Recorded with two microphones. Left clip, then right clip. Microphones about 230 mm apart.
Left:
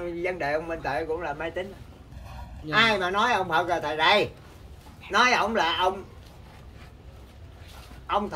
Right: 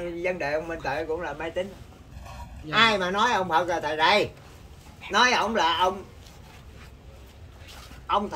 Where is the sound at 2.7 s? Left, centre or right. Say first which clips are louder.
Right 1 dB; centre.